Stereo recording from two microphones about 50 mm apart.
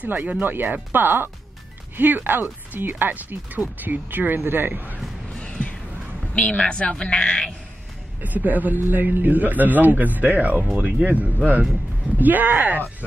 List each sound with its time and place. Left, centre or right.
0.0 s a man's voice: right
5.4 s music: left
6.3 s a woman's voice: left
8.2 s a man's voice: right